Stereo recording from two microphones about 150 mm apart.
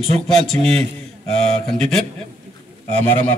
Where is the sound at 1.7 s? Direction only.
5° left (ahead or behind).